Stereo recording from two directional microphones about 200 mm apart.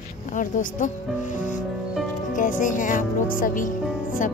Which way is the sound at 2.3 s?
40° left (ahead or behind).